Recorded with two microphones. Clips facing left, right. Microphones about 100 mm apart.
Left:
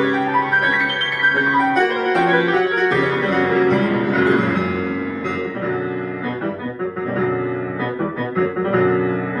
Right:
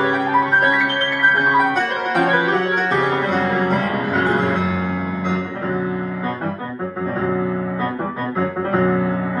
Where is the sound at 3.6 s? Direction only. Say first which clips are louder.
Left 3 dB; centre (ahead or behind).